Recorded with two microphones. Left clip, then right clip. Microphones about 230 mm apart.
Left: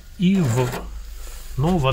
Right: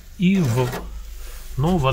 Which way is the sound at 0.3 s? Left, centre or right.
Centre.